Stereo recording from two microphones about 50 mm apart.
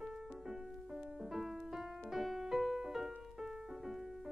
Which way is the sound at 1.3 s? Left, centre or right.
Centre.